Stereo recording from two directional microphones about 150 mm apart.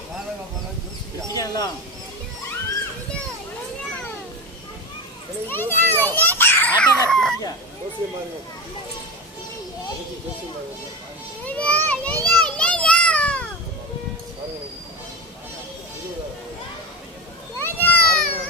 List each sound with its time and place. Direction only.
1.3 s speech: 25° left (ahead or behind)
5.5 s children playing: 15° left (ahead or behind)
11.4 s children playing: 10° left (ahead or behind)
17.6 s children playing: 15° left (ahead or behind)